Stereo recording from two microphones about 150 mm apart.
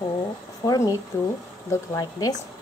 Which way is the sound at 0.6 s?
25° left (ahead or behind).